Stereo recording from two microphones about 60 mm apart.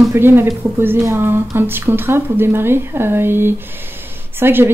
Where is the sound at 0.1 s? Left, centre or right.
Right.